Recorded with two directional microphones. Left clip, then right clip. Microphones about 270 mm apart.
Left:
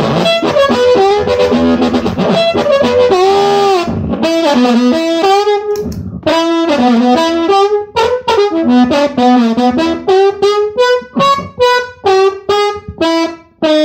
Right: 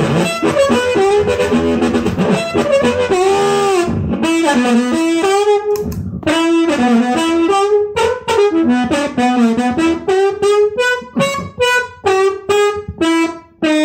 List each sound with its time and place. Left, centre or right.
0.1 s music: left
6.2 s saxophone: left
10.0 s harmonica: left